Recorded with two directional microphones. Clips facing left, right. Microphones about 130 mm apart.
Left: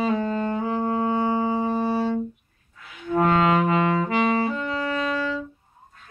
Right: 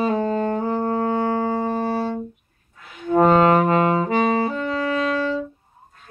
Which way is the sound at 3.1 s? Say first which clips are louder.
Right 5 dB; 40° right (ahead or behind).